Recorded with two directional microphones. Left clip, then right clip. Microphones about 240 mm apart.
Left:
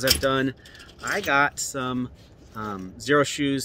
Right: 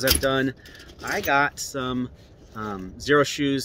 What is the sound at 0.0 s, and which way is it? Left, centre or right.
Speech, centre.